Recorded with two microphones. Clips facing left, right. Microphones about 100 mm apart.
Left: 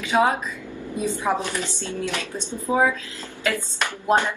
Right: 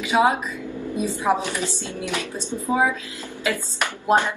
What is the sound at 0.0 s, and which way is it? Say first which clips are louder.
Speech: right 1 dB; 15° right (ahead or behind).